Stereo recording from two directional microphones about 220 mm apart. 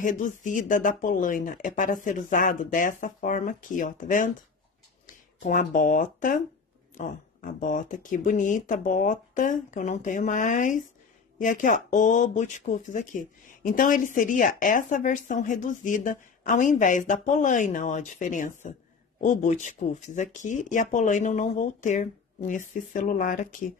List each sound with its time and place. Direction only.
0.0 s speech: 35° left (ahead or behind)